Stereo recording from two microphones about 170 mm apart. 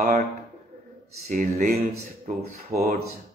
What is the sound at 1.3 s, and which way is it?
Speech, 50° right (ahead or behind).